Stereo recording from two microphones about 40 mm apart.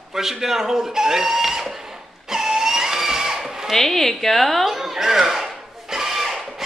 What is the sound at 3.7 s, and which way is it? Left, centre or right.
Speech, centre.